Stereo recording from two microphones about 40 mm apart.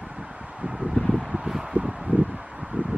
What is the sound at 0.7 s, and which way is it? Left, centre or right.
Wind, centre.